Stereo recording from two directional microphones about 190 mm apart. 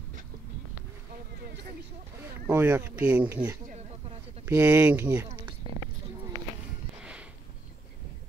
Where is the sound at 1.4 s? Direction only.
55° right (ahead or behind).